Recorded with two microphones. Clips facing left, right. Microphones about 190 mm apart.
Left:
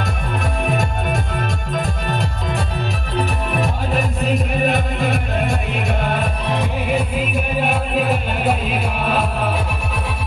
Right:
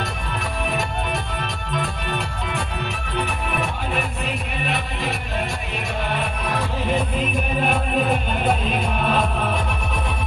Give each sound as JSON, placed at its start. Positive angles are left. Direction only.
{"t": 0.7, "sound": "music", "side_deg": 50}
{"t": 7.6, "sound": "music", "side_deg": 5}